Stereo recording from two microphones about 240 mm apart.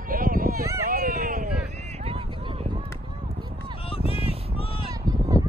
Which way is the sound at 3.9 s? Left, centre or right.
Left.